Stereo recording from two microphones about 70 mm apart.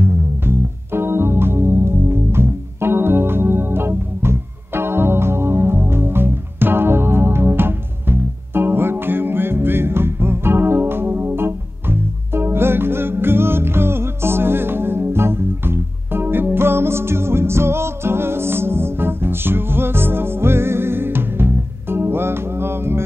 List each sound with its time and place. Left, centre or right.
0.0 s music: right